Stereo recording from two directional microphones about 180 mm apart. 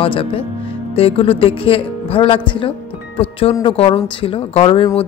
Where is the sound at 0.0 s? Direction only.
30° left (ahead or behind).